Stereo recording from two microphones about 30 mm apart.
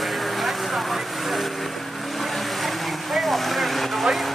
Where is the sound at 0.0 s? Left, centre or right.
Centre.